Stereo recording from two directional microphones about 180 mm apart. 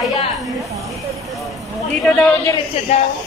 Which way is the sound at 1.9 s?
5° left (ahead or behind).